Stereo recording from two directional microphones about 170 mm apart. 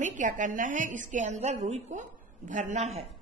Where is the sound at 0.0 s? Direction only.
50° right (ahead or behind).